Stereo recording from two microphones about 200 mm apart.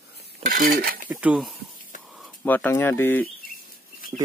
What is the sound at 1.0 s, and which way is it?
Speech, 5° right (ahead or behind).